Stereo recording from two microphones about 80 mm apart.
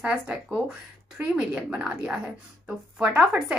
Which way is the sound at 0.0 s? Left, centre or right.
Centre.